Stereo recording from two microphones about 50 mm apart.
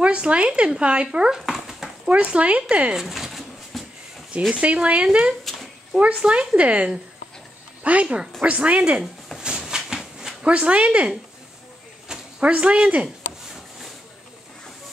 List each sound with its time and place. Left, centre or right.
0.0 s speech: right
1.4 s dog: centre
2.0 s speech: right
3.0 s pigeon: centre
4.5 s speech: right
5.4 s cat: centre
5.9 s speech: right
9.6 s a sound: centre
10.4 s speech: right
12.4 s speech: right